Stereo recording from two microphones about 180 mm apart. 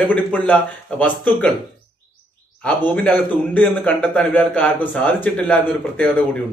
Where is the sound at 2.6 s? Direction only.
10° left (ahead or behind).